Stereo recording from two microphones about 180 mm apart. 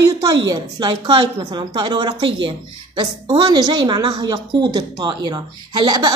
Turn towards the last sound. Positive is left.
turn(degrees=-25)  # may be behind; listen again after turning